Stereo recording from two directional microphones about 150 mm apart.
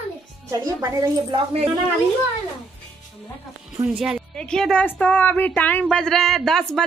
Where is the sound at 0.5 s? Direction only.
25° right (ahead or behind).